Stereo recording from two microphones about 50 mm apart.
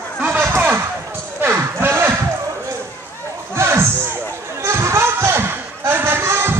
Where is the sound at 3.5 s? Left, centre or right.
Right.